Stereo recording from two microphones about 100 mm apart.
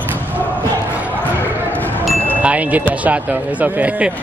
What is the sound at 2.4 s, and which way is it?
Music, 15° right (ahead or behind).